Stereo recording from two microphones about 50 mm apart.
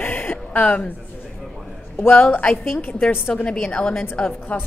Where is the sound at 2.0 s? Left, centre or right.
Left.